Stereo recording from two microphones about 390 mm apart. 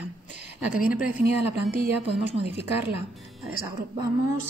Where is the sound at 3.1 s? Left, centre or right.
Centre.